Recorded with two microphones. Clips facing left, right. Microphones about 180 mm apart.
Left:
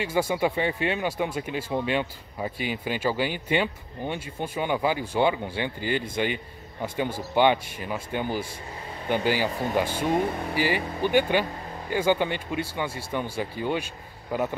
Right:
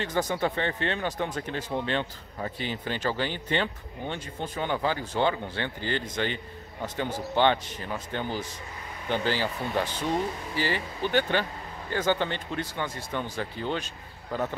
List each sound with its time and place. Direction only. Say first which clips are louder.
0.0 s speech: left 3 dB; 10° left (ahead or behind)
10.0 s speech: left 4 dB; 55° left (ahead or behind)
10.5 s speech: left 4 dB; 15° left (ahead or behind)